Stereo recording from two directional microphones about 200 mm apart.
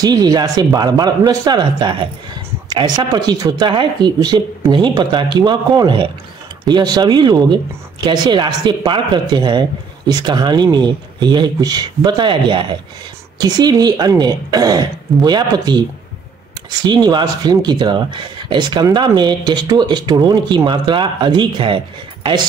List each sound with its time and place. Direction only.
0.0 s speech: 20° right (ahead or behind)